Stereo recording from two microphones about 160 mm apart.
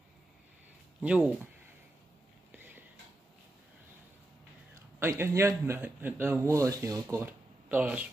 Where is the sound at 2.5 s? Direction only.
10° right (ahead or behind).